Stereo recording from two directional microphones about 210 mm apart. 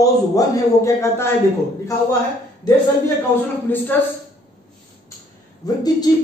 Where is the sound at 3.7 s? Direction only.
10° left (ahead or behind).